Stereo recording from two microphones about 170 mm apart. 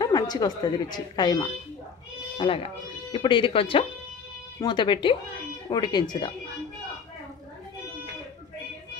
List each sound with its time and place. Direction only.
0.0 s speech: 25° left (ahead or behind)